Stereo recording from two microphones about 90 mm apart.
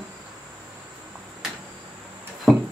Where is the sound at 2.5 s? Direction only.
Centre (ahead or behind).